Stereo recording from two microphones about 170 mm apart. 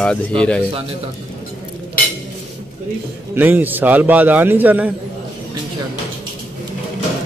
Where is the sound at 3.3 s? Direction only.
10° right (ahead or behind).